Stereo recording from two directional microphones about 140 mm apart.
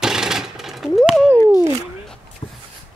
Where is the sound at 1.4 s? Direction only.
25° left (ahead or behind).